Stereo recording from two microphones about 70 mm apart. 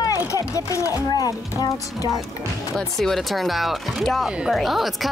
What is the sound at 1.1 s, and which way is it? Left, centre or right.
Speech, left.